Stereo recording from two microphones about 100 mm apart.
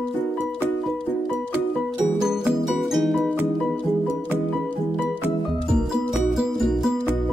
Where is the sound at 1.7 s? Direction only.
5° right (ahead or behind).